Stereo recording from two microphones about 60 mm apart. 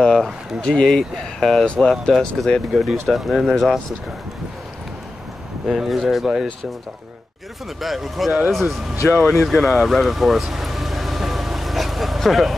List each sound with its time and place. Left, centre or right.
0.0 s a sound: centre
0.7 s speech: centre
1.7 s speech: centre
2.1 s speech: centre
5.7 s speech: centre
7.8 s speech: centre
9.2 s a sound: centre